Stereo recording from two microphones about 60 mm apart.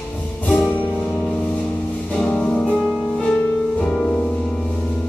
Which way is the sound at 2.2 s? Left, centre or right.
Centre.